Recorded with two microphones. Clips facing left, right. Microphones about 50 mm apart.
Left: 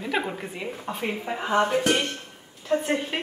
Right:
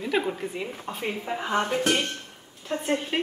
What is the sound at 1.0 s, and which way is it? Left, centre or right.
Speech, left.